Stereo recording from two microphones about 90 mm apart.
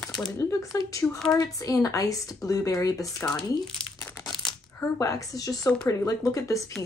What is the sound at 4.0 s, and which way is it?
Crumpling, 20° left (ahead or behind).